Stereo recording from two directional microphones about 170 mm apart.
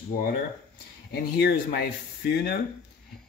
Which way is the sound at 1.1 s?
75° left (ahead or behind).